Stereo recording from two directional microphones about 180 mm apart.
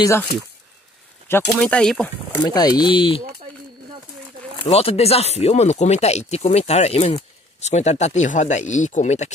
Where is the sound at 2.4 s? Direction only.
20° left (ahead or behind).